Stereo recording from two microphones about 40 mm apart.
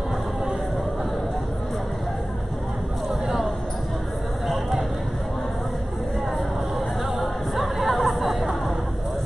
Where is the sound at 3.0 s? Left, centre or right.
Centre.